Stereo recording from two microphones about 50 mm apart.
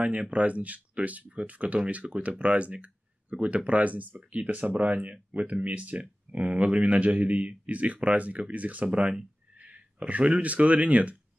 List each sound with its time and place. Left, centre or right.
0.0 s speech: right